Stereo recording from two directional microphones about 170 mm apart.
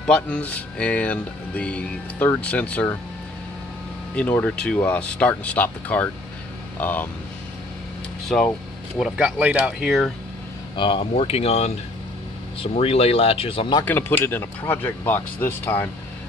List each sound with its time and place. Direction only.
0.0 s speech: 5° left (ahead or behind)
4.1 s speech: 10° left (ahead or behind)
8.9 s speech: 5° right (ahead or behind)
10.8 s speech: 30° left (ahead or behind)
13.8 s speech: 10° left (ahead or behind)